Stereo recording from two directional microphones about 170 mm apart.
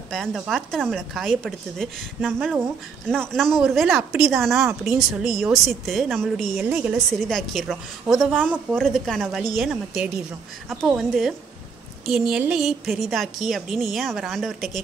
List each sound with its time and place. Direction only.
0.1 s a woman's voice: centre (ahead or behind)
2.3 s speech: 10° right (ahead or behind)
3.3 s a woman's voice: 5° left (ahead or behind)